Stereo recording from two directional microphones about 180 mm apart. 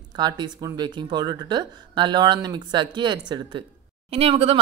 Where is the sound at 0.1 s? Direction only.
25° right (ahead or behind).